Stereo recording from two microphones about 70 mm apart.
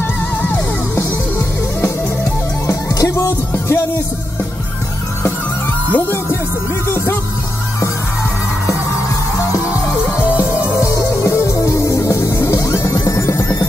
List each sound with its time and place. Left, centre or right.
0.4 s music: left
2.6 s music: left
3.5 s music: left
5.9 s music: left
10.3 s music: left